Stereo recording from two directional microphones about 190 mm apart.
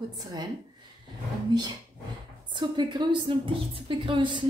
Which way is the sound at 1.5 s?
20° right (ahead or behind).